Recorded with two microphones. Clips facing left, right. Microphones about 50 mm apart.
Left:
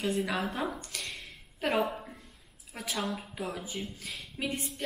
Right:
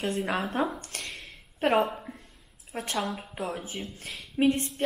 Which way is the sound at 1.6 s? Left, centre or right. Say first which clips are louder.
Right 6 dB; right.